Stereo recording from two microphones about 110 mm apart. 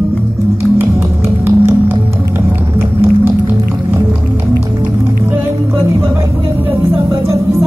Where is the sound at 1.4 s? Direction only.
20° right (ahead or behind).